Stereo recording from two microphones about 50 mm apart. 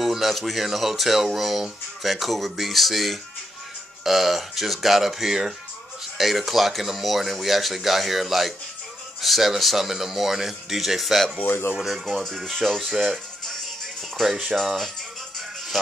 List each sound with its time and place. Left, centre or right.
0.0 s speech: centre
11.3 s speech: left
11.8 s speech: centre
13.0 s music: centre
14.2 s speech: centre
15.7 s speech: centre